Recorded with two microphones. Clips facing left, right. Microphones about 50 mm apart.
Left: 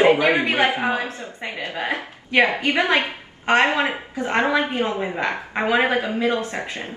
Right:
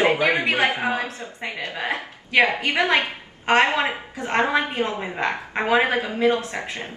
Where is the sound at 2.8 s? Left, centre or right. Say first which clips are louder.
Even; left.